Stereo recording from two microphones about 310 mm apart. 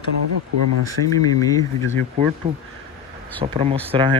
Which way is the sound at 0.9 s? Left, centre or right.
Centre.